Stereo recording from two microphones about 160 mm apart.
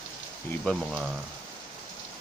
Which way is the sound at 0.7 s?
5° right (ahead or behind).